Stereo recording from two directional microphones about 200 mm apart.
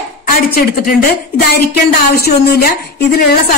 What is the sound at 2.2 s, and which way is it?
A woman's voice, 50° left (ahead or behind).